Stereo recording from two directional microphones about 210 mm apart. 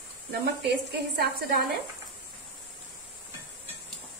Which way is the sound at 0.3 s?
50° right (ahead or behind).